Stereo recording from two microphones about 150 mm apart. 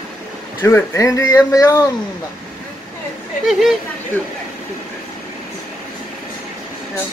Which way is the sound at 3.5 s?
Centre (ahead or behind).